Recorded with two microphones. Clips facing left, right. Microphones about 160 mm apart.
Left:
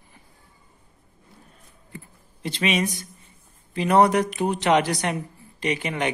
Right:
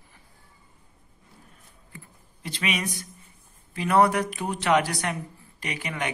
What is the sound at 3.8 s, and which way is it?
Speech, 20° left (ahead or behind).